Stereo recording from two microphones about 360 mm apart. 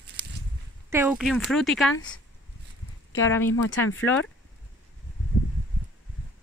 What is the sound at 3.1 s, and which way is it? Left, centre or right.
Speech, centre.